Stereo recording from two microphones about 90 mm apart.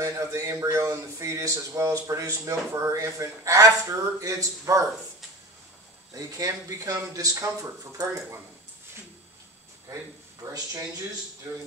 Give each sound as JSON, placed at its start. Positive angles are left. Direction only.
{"t": 0.0, "sound": "speech", "side_deg": -35}
{"t": 6.1, "sound": "speech", "side_deg": -40}
{"t": 9.9, "sound": "speech", "side_deg": -35}